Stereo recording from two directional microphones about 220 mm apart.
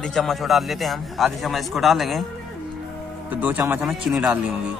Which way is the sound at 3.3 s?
5° right (ahead or behind).